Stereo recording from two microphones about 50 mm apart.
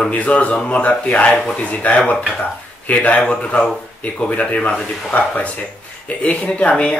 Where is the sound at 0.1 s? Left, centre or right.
Left.